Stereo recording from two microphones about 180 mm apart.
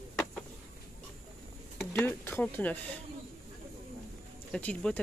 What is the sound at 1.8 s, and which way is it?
Speech, 15° left (ahead or behind).